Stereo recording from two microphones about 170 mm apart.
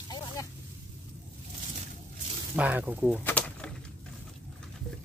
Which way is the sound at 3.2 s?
10° left (ahead or behind).